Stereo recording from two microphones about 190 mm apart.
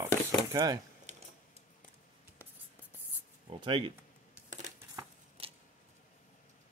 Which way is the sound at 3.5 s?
25° right (ahead or behind).